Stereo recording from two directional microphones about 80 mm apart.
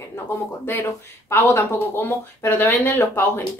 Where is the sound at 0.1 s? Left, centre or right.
Left.